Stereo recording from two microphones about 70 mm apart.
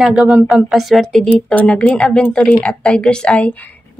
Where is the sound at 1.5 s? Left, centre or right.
Left.